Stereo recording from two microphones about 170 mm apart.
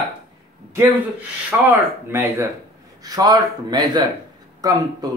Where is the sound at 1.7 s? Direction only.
15° right (ahead or behind).